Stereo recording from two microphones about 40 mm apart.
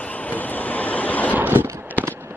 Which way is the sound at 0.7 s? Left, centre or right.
Left.